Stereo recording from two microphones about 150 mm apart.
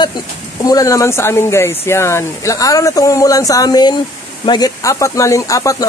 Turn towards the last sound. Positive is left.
turn(degrees=20)  # may be behind; listen again after turning